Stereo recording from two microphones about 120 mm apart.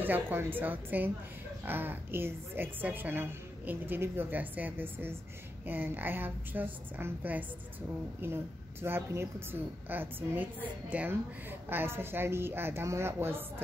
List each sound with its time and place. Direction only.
0.0 s a woman's voice: 15° right (ahead or behind)